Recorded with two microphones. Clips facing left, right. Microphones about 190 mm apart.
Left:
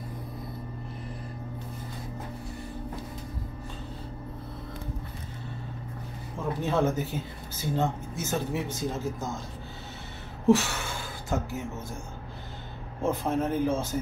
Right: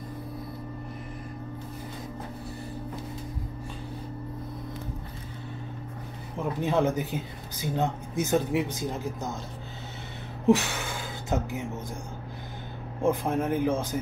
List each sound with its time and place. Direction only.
6.3 s speech: 15° right (ahead or behind)
10.4 s gasp: 15° right (ahead or behind)
13.0 s speech: 15° right (ahead or behind)